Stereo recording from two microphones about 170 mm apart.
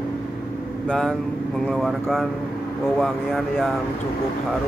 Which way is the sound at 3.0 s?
Centre (ahead or behind).